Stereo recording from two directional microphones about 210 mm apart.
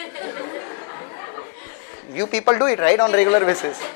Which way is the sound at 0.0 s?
10° left (ahead or behind).